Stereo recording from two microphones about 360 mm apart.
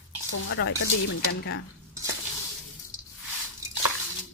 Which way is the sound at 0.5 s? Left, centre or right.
Left.